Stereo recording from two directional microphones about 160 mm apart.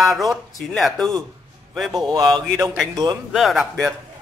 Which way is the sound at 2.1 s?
30° right (ahead or behind).